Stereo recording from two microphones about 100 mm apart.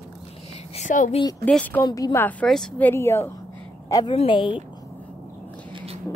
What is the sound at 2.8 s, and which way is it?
Speech, 25° left (ahead or behind).